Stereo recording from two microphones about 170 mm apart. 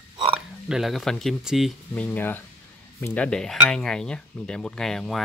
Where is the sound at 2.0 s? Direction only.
10° left (ahead or behind).